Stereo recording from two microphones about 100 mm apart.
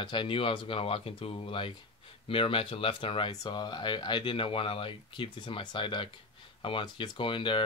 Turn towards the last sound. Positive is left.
turn(degrees=55)  # may be behind; listen again after turning